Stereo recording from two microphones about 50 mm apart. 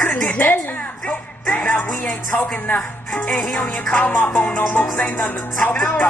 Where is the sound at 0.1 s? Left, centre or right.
Left.